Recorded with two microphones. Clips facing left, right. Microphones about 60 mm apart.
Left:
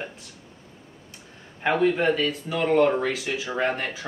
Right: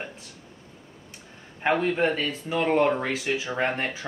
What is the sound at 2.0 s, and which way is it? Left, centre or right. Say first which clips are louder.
Speech: left 2 dB; right.